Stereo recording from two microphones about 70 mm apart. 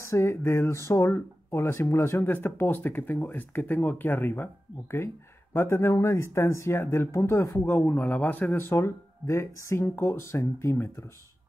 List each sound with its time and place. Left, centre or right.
0.0 s speech: left
7.6 s speech: left